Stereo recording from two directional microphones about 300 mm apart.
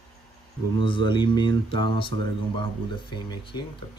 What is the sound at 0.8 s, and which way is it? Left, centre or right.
Speech, centre.